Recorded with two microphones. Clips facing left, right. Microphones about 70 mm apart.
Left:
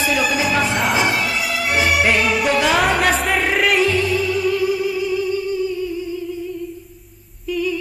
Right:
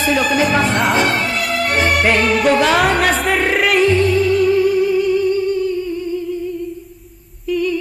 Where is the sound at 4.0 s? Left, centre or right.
Right.